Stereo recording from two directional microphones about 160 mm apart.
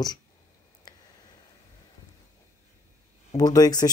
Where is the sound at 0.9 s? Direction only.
25° left (ahead or behind).